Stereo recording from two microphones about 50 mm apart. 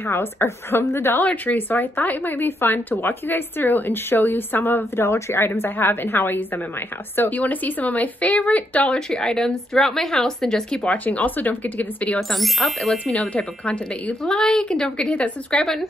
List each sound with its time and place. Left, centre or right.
0.0 s speech: left
1.2 s speech: left
9.1 s a woman's voice: centre
10.9 s speech: left
12.2 s speech: centre
12.9 s speech: left
14.2 s a woman's voice: centre
15.6 s speech: centre